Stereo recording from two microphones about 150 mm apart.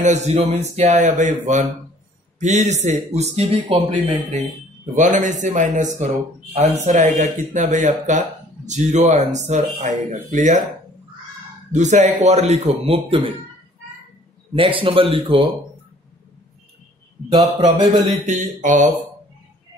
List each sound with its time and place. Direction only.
0.0 s speech: 50° right (ahead or behind)
4.9 s a man's voice: 55° right (ahead or behind)
11.7 s speech: 50° right (ahead or behind)
14.5 s a man's voice: 35° right (ahead or behind)
17.9 s speech: 30° right (ahead or behind)
18.2 s a man's voice: 55° right (ahead or behind)